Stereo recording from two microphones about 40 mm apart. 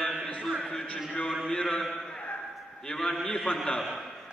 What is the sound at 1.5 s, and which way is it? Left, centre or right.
Speech, left.